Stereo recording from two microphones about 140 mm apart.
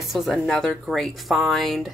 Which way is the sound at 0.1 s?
Centre (ahead or behind).